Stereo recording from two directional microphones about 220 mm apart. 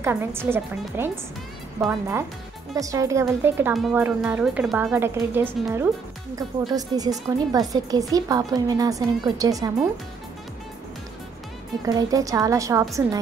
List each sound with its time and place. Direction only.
0.0 s speech: 10° right (ahead or behind)
11.8 s speech: 15° right (ahead or behind)